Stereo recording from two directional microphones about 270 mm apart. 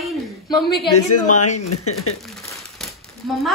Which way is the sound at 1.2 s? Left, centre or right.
Left.